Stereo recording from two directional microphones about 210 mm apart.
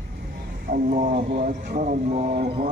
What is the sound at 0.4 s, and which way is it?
Speech, 45° right (ahead or behind).